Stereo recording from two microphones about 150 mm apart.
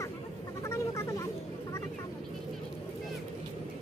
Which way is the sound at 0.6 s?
20° left (ahead or behind).